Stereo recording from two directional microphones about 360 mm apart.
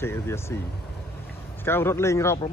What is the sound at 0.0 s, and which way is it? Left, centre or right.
Speech, centre.